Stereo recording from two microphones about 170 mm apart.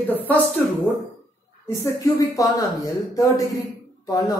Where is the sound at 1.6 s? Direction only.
20° left (ahead or behind).